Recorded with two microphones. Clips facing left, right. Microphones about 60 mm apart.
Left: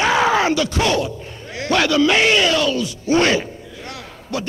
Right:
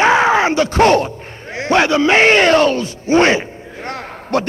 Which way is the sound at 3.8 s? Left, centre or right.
Right.